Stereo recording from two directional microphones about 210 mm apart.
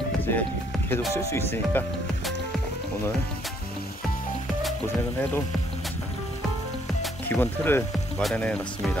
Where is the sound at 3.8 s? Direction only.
40° left (ahead or behind).